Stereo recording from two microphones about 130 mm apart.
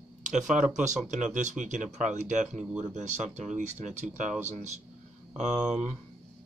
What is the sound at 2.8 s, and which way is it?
Speech, 65° right (ahead or behind).